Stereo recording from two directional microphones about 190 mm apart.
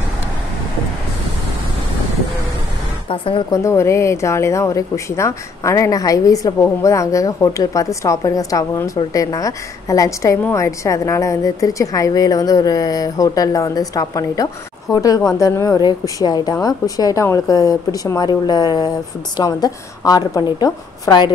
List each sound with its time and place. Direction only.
3.1 s a woman's voice: 30° left (ahead or behind)
3.6 s a woman's voice: 15° left (ahead or behind)